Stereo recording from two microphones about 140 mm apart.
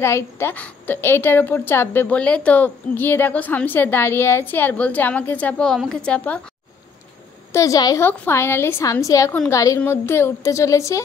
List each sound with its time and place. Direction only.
0.0 s a woman's voice: 20° left (ahead or behind)
7.5 s a woman's voice: 25° left (ahead or behind)